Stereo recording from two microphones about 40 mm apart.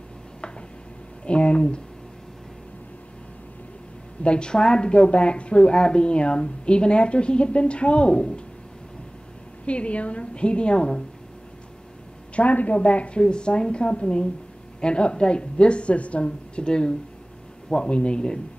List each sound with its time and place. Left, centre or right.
1.2 s speech: left
4.2 s speech: left
9.7 s speech: left
12.4 s speech: left